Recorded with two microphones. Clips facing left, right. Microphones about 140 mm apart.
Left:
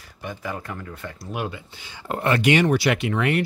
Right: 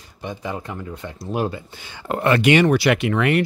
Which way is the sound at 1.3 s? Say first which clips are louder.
Right 6 dB; 35° right (ahead or behind).